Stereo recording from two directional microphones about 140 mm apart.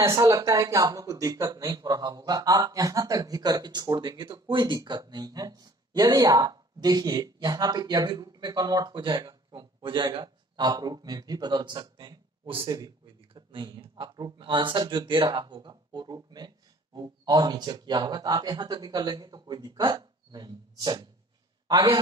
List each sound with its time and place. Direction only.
0.0 s speech: 25° right (ahead or behind)